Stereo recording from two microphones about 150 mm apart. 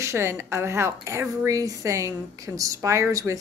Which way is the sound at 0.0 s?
20° right (ahead or behind).